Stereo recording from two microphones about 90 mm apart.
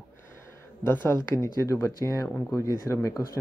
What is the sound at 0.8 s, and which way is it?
Speech, 30° left (ahead or behind).